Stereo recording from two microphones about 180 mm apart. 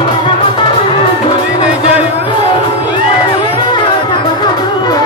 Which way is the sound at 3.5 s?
25° left (ahead or behind).